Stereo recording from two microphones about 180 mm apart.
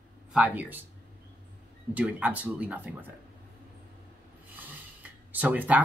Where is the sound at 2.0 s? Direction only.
10° right (ahead or behind).